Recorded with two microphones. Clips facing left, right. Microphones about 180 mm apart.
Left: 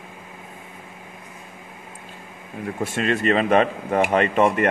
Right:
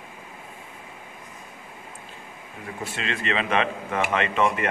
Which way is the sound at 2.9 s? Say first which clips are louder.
Left 8 dB; 45° left (ahead or behind).